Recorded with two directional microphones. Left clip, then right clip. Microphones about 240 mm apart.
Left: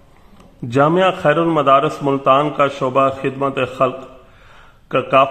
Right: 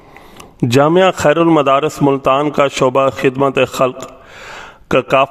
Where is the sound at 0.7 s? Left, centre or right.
Right.